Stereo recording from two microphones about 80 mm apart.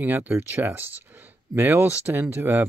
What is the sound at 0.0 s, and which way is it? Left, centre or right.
Speech, right.